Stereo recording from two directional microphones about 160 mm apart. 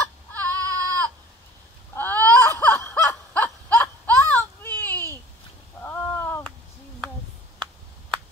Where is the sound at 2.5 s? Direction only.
15° left (ahead or behind).